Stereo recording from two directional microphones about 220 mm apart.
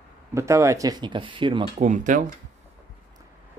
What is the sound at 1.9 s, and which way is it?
Speech, 35° right (ahead or behind).